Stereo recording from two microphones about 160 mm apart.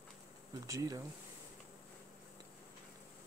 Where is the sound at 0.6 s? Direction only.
20° right (ahead or behind).